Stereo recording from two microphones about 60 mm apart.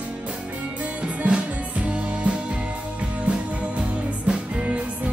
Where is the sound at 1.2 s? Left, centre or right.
Centre.